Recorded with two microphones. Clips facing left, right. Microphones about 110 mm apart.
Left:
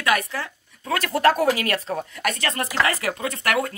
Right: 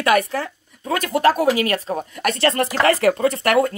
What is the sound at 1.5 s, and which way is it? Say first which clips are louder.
Speech: right 3 dB; 25° right (ahead or behind).